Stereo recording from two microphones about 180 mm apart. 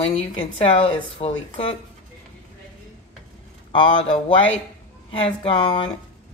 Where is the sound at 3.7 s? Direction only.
25° left (ahead or behind).